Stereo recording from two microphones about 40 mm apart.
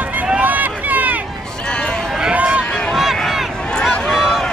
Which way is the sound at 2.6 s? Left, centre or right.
Left.